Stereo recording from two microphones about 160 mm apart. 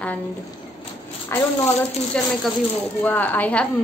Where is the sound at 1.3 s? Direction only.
15° left (ahead or behind).